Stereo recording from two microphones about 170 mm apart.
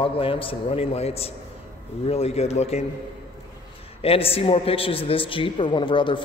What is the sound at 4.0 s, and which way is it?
A man's voice, 35° left (ahead or behind).